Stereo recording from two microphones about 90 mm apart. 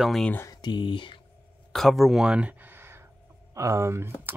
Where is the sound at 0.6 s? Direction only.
60° left (ahead or behind).